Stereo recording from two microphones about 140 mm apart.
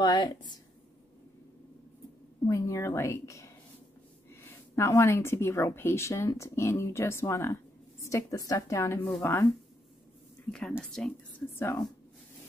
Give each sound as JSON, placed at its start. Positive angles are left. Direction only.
{"t": 0.0, "sound": "a woman's voice", "side_deg": 30}
{"t": 2.4, "sound": "speech", "side_deg": 20}
{"t": 4.7, "sound": "speech", "side_deg": 20}
{"t": 10.8, "sound": "speech", "side_deg": 5}
{"t": 11.5, "sound": "a woman's voice", "side_deg": 15}